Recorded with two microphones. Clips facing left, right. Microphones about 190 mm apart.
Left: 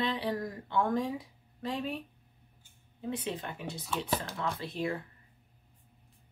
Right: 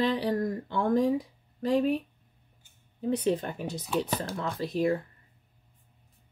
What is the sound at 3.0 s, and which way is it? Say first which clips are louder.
Speech: right 9 dB; 40° right (ahead or behind).